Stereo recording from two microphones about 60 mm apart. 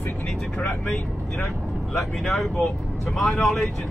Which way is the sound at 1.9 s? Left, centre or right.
Centre.